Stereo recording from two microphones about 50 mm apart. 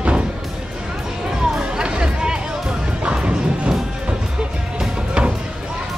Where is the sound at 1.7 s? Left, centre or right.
Centre.